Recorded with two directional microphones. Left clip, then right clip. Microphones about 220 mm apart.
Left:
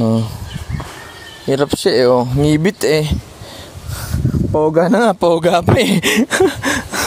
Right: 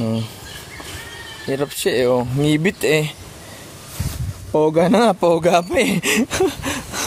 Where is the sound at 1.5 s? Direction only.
30° left (ahead or behind).